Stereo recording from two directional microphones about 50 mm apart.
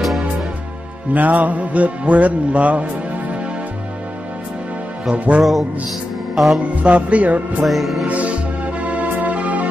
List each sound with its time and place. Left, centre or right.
1.1 s music: right
5.1 s music: right
5.4 s music: centre
6.7 s music: right
7.6 s music: centre
8.1 s music: right